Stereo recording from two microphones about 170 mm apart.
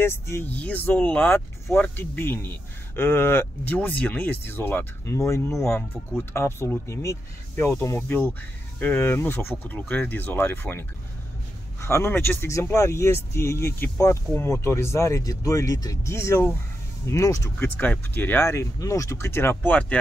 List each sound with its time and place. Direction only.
0.0 s speech: 15° left (ahead or behind)